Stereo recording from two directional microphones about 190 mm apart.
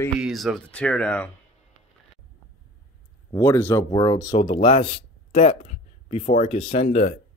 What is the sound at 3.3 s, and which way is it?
Speech, 15° left (ahead or behind).